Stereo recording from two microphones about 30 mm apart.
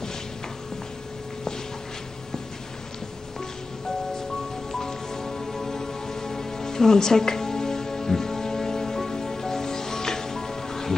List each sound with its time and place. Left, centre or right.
4.7 s music: centre